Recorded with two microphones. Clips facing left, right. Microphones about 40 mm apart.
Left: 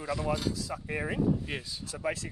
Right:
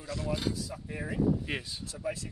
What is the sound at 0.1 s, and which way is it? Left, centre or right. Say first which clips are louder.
Speech: left 3 dB; centre.